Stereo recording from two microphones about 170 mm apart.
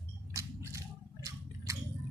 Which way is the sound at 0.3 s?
15° right (ahead or behind).